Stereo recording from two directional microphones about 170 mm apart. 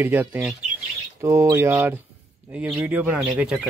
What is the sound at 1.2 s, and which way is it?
Speech, 15° right (ahead or behind).